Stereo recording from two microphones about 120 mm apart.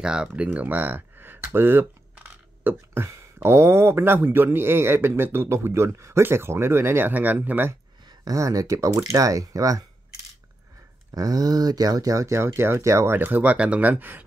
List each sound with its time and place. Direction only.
0.0 s speech: 5° right (ahead or behind)
8.3 s speech: 30° right (ahead or behind)
11.1 s speech: 30° right (ahead or behind)